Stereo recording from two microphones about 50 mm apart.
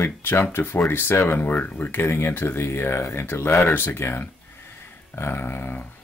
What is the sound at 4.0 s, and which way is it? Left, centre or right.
Speech, left.